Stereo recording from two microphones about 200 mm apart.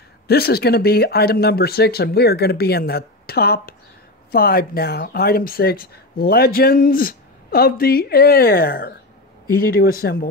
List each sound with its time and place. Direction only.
0.3 s speech: 50° left (ahead or behind)